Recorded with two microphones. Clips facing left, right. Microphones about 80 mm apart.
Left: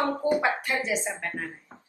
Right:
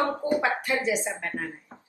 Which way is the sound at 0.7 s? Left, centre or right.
Right.